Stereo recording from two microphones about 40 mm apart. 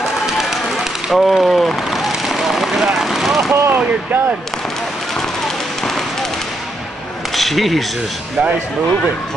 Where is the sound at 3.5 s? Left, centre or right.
Right.